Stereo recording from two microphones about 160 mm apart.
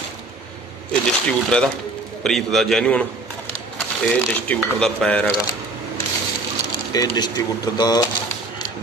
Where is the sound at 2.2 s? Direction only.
Centre (ahead or behind).